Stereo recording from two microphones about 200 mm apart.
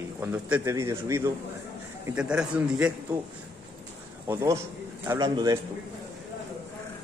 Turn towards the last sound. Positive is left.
turn(degrees=-15)  # may be behind; listen again after turning